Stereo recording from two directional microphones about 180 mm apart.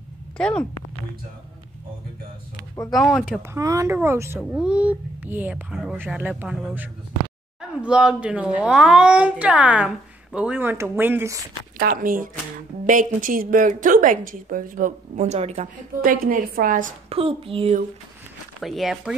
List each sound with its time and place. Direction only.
0.4 s speech: 5° left (ahead or behind)
3.5 s a child's voice: 15° right (ahead or behind)
11.8 s a woman's voice: 55° right (ahead or behind); by 15.7 s 35° right (ahead or behind)
16.0 s a woman's voice: 50° right (ahead or behind)
17.1 s speech: 30° right (ahead or behind)
18.6 s speech: centre (ahead or behind)